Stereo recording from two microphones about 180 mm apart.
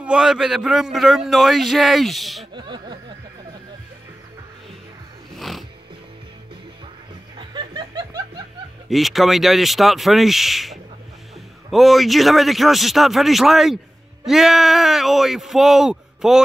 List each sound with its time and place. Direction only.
0.0 s speech: 5° right (ahead or behind)
2.5 s speech: 25° right (ahead or behind)
7.3 s chuckle: 25° right (ahead or behind)
8.8 s speech: centre (ahead or behind)